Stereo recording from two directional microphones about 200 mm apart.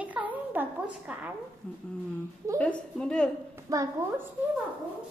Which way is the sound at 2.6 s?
5° left (ahead or behind).